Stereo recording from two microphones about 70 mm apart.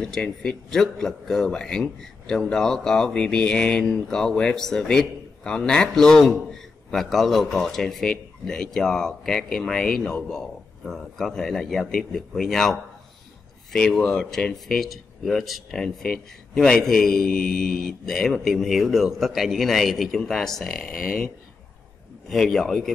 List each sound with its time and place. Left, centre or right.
0.0 s a man's voice: centre
13.7 s a man's voice: centre
22.3 s speech: centre